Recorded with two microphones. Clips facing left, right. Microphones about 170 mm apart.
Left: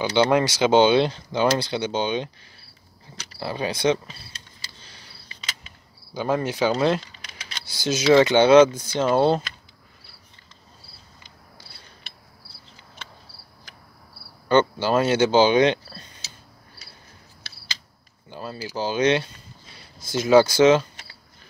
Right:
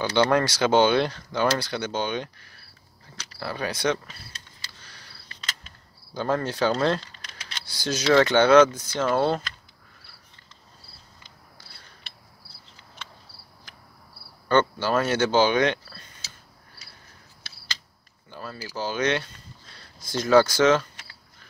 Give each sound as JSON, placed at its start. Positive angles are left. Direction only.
{"t": 0.0, "sound": "speech", "side_deg": 15}
{"t": 4.7, "sound": "a sound", "side_deg": 25}
{"t": 6.1, "sound": "speech", "side_deg": 15}
{"t": 14.5, "sound": "speech", "side_deg": 20}
{"t": 18.3, "sound": "speech", "side_deg": 25}
{"t": 19.6, "sound": "speech", "side_deg": 10}